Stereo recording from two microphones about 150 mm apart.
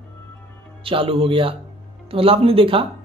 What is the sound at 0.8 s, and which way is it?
Speech, 40° right (ahead or behind).